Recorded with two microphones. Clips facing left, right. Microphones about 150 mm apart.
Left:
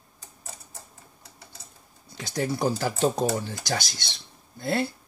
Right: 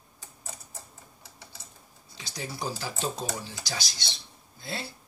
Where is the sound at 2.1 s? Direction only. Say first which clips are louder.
Left 11 dB; 55° left (ahead or behind).